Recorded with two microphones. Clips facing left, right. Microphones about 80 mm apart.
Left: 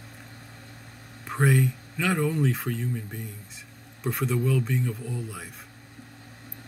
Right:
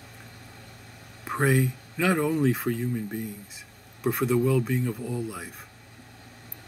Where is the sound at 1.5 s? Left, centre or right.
Centre.